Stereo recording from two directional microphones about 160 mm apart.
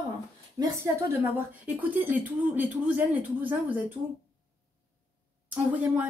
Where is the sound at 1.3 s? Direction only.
10° right (ahead or behind).